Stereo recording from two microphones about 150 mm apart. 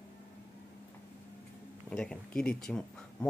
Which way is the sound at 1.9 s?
5° left (ahead or behind).